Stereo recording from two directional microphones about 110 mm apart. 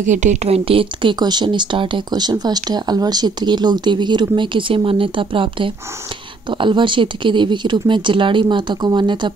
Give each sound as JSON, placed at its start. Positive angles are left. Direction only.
{"t": 0.0, "sound": "a woman's voice", "side_deg": -90}
{"t": 1.2, "sound": "speech", "side_deg": -40}